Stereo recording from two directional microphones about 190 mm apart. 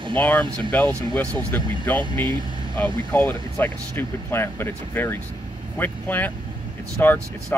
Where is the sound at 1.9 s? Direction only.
25° right (ahead or behind).